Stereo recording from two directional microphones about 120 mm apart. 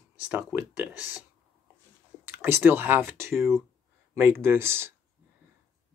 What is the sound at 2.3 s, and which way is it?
Speech, 20° right (ahead or behind).